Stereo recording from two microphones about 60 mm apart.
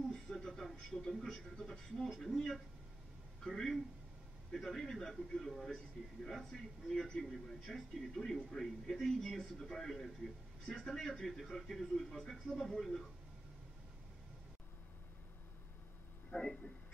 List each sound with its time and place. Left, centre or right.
0.1 s a man's voice: centre
16.3 s speech: left